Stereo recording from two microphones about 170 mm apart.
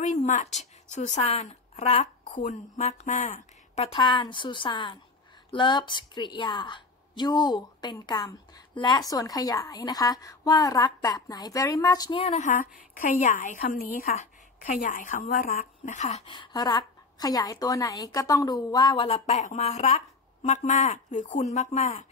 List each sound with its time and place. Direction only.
0.0 s a woman's voice: 45° left (ahead or behind)
4.0 s a woman's voice: 30° left (ahead or behind)
16.3 s a woman's voice: 25° left (ahead or behind)
19.0 s speech: 40° left (ahead or behind)